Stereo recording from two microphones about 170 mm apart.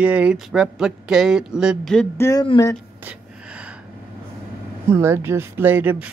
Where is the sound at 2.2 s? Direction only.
15° left (ahead or behind).